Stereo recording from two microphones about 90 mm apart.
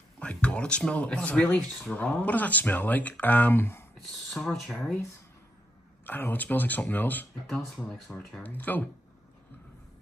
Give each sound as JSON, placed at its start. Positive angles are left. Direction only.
{"t": 0.2, "sound": "speech", "side_deg": 15}
{"t": 4.3, "sound": "speech", "side_deg": 5}
{"t": 6.0, "sound": "speech", "side_deg": 20}
{"t": 7.4, "sound": "speech", "side_deg": 5}
{"t": 8.4, "sound": "speech", "side_deg": 20}